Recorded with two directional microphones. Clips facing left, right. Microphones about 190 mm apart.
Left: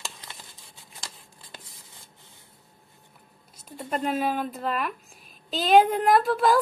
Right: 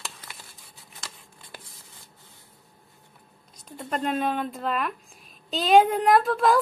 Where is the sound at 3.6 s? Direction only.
5° left (ahead or behind).